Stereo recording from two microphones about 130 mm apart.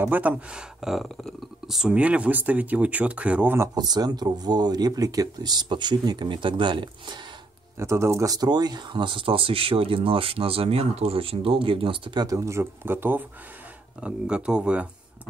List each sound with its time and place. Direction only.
0.0 s speech: 15° right (ahead or behind)
3.7 s speech: 30° right (ahead or behind)
7.8 s speech: 20° right (ahead or behind)